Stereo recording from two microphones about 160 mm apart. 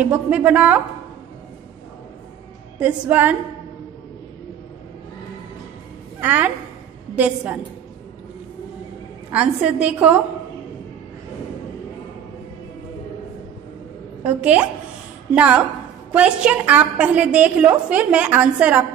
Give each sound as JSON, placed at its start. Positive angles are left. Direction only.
{"t": 0.0, "sound": "a woman's voice", "side_deg": -10}
{"t": 2.8, "sound": "a woman's voice", "side_deg": -10}
{"t": 6.2, "sound": "a woman's voice", "side_deg": -10}
{"t": 9.3, "sound": "a woman's voice", "side_deg": -5}
{"t": 14.2, "sound": "a woman's voice", "side_deg": -10}